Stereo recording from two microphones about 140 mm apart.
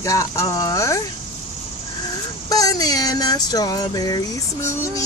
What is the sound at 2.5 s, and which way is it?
Speech, 25° left (ahead or behind).